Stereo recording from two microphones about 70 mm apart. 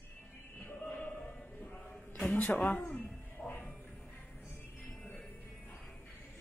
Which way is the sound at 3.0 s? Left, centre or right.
Left.